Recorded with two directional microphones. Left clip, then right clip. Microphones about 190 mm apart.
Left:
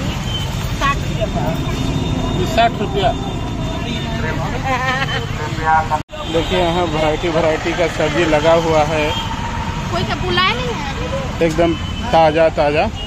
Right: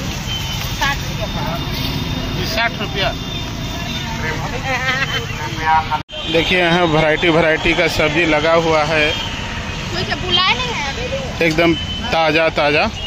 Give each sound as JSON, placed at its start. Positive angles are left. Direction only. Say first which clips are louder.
{"t": 4.6, "sound": "speech", "louder": "even", "side_deg": -5}
{"t": 5.7, "sound": "speech", "louder": "even", "side_deg": 35}
{"t": 6.5, "sound": "speech", "louder": "right 3 dB", "side_deg": -30}
{"t": 8.3, "sound": "speech", "louder": "left 3 dB", "side_deg": -15}
{"t": 10.3, "sound": "speech", "louder": "right 1 dB", "side_deg": 60}
{"t": 11.4, "sound": "speech", "louder": "right 1 dB", "side_deg": -20}